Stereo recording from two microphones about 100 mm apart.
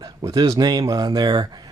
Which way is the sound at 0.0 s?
40° right (ahead or behind).